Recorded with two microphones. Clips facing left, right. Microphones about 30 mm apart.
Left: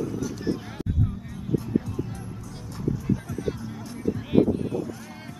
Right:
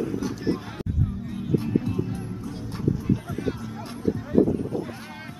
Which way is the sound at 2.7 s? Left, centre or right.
Right.